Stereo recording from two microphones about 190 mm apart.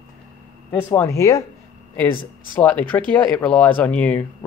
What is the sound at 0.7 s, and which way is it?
Speech, 10° left (ahead or behind).